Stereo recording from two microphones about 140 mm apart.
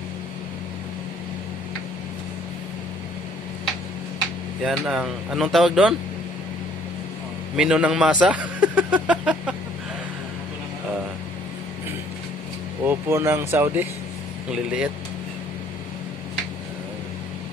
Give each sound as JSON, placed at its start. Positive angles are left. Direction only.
{"t": 4.6, "sound": "speech", "side_deg": -5}
{"t": 7.5, "sound": "a man's voice", "side_deg": -5}
{"t": 12.8, "sound": "speech", "side_deg": -20}